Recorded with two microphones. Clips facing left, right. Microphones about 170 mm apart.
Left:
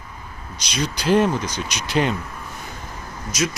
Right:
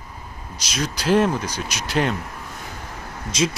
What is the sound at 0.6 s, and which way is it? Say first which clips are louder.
Speech: left 1 dB; centre (ahead or behind).